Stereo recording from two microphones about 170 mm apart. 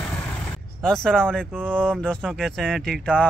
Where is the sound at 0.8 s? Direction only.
5° left (ahead or behind).